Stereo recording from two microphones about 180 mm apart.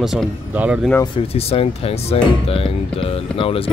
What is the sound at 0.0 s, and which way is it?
Speech, centre (ahead or behind).